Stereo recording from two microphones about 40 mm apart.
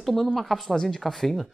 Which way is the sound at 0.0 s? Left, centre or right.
Centre.